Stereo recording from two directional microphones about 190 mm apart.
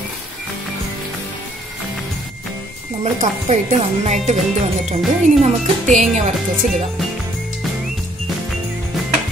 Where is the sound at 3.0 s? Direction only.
35° right (ahead or behind).